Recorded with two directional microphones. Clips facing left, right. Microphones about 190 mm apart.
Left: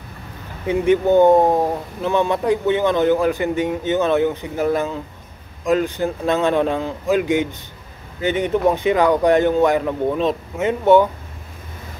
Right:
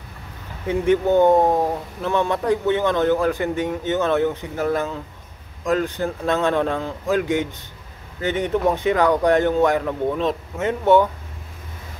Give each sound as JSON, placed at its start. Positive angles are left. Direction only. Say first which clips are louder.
{"t": 0.7, "sound": "speech", "louder": "left 2 dB", "side_deg": 10}